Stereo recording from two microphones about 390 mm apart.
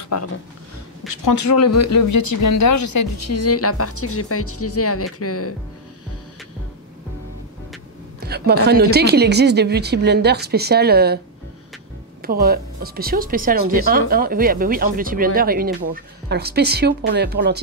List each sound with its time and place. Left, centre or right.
0.1 s speech: left
8.2 s speech: right
12.2 s speech: right